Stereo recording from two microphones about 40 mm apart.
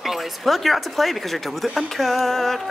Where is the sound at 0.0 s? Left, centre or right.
Centre.